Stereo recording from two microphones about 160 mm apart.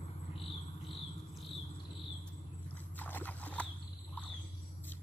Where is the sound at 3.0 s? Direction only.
10° left (ahead or behind).